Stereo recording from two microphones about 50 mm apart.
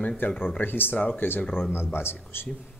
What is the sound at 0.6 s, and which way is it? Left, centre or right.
Speech, left.